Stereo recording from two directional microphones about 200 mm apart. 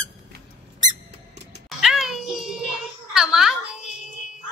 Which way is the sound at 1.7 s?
Centre (ahead or behind).